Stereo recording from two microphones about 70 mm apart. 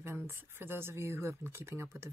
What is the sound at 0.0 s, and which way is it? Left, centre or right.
Speech, right.